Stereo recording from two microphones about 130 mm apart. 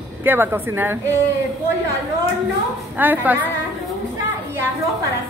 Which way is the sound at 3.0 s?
15° right (ahead or behind).